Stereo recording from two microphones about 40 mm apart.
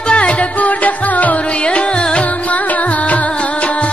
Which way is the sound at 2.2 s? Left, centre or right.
Left.